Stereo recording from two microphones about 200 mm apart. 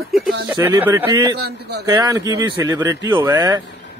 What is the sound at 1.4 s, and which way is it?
Speech, 55° right (ahead or behind).